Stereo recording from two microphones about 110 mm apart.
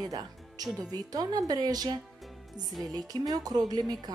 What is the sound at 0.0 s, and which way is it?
Music, 35° right (ahead or behind).